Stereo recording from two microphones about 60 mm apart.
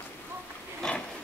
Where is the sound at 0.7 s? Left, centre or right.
Centre.